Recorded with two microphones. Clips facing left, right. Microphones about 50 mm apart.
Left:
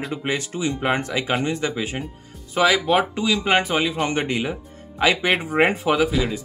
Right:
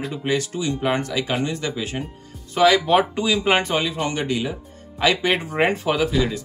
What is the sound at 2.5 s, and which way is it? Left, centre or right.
Speech, centre.